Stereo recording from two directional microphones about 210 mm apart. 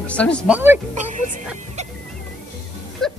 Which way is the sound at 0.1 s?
5° left (ahead or behind).